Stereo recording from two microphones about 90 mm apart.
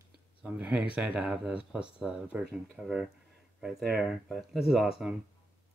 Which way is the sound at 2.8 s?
Centre (ahead or behind).